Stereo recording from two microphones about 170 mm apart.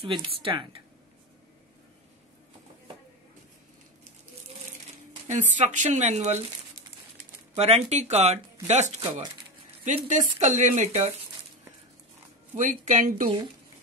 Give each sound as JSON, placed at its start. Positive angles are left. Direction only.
{"t": 0.0, "sound": "speech", "side_deg": -30}
{"t": 5.3, "sound": "speech", "side_deg": -45}
{"t": 7.5, "sound": "speech", "side_deg": -40}
{"t": 12.5, "sound": "speech", "side_deg": -50}